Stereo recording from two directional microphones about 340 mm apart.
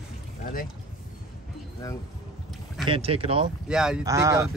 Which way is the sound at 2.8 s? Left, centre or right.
Centre.